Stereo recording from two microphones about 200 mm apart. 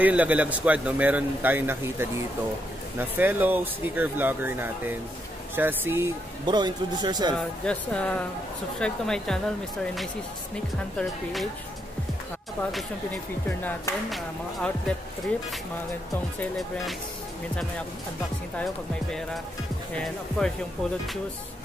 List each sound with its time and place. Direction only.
0.0 s a man's voice: 10° right (ahead or behind)
6.4 s speech: 20° right (ahead or behind)
7.3 s speech: 5° left (ahead or behind)
14.1 s speech: 5° left (ahead or behind)
16.3 s speech: centre (ahead or behind)
20.0 s speech: 5° left (ahead or behind)